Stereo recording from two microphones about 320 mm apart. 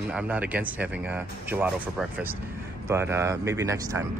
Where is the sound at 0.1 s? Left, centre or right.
Centre.